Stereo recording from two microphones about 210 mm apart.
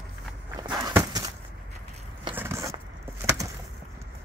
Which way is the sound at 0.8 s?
15° right (ahead or behind).